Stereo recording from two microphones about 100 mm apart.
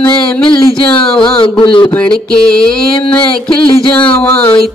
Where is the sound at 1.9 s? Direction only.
10° left (ahead or behind).